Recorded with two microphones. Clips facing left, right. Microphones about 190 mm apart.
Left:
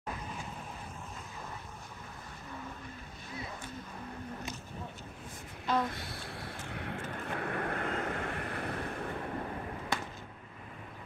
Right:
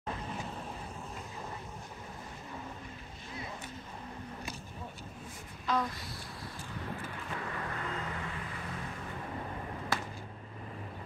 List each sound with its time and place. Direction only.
5.7 s speech: centre (ahead or behind)
5.9 s vehicle: 60° left (ahead or behind)